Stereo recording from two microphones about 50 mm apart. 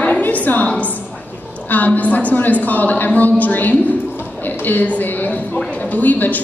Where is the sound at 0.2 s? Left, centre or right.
Left.